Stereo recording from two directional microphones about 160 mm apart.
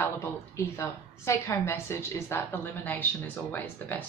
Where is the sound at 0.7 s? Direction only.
15° left (ahead or behind).